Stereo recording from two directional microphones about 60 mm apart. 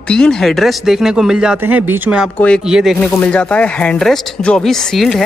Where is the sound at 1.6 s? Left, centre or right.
Right.